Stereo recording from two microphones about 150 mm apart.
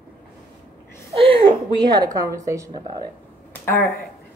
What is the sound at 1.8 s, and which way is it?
A woman's voice, 30° right (ahead or behind).